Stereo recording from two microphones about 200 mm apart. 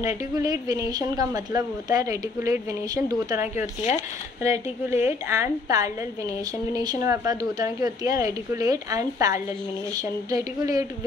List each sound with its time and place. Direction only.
0.0 s a woman's voice: 15° right (ahead or behind)